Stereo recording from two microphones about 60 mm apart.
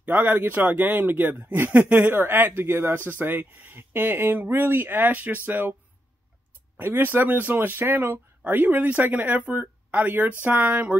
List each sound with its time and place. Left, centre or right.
0.0 s speech: right
6.8 s speech: right